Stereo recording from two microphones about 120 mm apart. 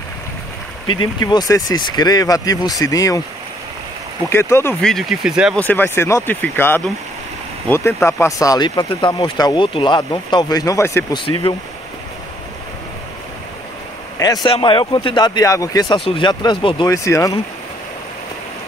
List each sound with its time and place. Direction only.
1.2 s speech: 30° left (ahead or behind)
4.3 s speech: 20° left (ahead or behind)
4.8 s speech: centre (ahead or behind)
5.6 s speech: 15° left (ahead or behind)
11.1 s speech: 50° left (ahead or behind)
14.1 s speech: 30° left (ahead or behind)
14.5 s speech: 45° left (ahead or behind)
16.8 s speech: 25° left (ahead or behind)